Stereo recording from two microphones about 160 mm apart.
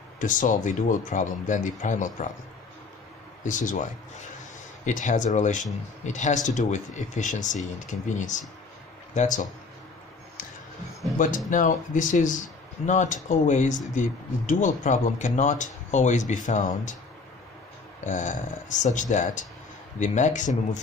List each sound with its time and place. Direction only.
0.2 s speech: 55° left (ahead or behind)
3.4 s speech: 55° left (ahead or behind)
4.8 s speech: 50° left (ahead or behind)
11.1 s speech: 55° left (ahead or behind)
18.0 s speech: 50° left (ahead or behind)